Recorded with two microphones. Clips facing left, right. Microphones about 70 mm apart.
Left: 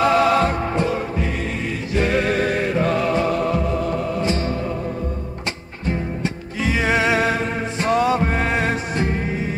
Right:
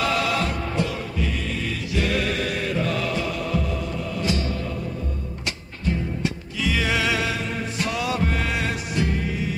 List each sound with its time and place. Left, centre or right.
0.0 s music: left
6.6 s music: left